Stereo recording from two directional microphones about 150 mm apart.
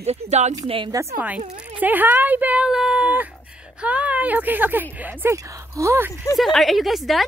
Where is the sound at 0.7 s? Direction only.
35° right (ahead or behind).